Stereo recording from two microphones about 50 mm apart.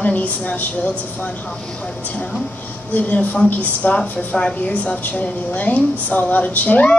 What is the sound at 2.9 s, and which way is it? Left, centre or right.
A woman's voice, left.